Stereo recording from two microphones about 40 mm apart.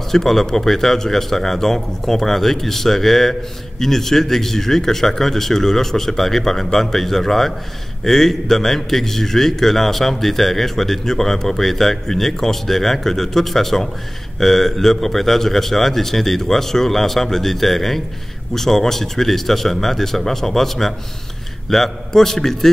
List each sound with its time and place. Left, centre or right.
0.1 s a man's voice: centre